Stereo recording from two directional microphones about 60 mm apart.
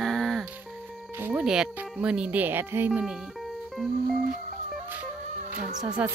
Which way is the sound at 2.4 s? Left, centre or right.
Right.